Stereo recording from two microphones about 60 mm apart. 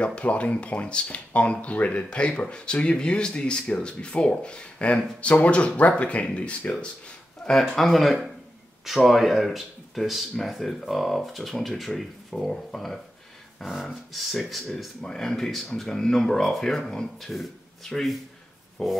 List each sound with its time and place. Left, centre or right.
0.0 s speech: centre
7.7 s speech: centre